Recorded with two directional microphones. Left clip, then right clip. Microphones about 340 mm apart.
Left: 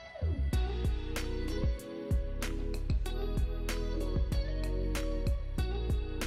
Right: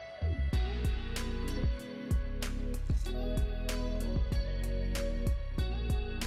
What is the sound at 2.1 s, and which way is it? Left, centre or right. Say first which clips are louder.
Music: left 2 dB; centre.